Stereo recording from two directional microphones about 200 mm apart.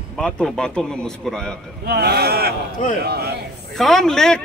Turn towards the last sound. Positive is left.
turn(degrees=5)  # may be behind; listen again after turning